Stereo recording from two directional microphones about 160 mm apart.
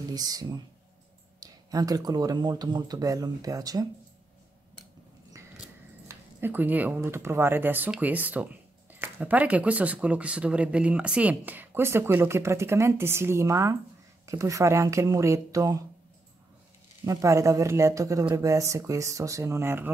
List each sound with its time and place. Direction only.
0.1 s speech: 25° right (ahead or behind)
6.0 s speech: 15° right (ahead or behind)
17.0 s speech: 20° right (ahead or behind)